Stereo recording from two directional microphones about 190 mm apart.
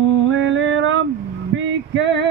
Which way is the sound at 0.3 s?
80° right.